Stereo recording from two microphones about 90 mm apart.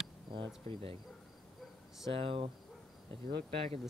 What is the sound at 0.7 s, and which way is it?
Speech, 90° right.